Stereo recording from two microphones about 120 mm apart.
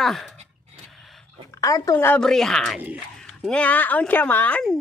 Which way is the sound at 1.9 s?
15° left (ahead or behind).